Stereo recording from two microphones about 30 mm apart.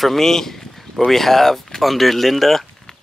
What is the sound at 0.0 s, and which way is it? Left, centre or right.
Speech, centre.